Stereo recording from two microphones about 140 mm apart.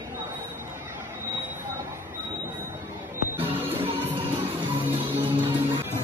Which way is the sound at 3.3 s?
15° right (ahead or behind).